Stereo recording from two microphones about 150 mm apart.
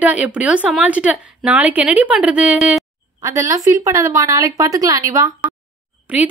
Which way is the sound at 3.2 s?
20° right (ahead or behind).